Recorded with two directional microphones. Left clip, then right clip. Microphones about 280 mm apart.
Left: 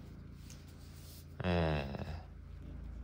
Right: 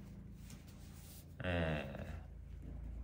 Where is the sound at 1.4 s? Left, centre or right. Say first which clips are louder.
Left 4 dB; centre.